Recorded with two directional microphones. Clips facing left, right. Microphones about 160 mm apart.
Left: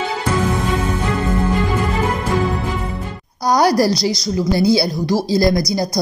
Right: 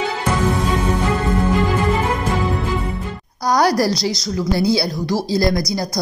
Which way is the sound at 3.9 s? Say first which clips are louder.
Left 2 dB; 25° right (ahead or behind).